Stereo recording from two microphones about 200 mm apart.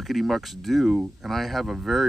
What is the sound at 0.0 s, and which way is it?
Speech, centre (ahead or behind).